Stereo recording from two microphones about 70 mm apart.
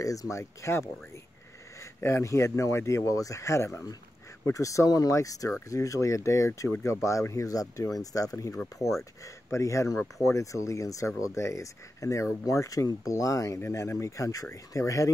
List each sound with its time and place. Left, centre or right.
0.0 s speech: left
2.0 s speech: left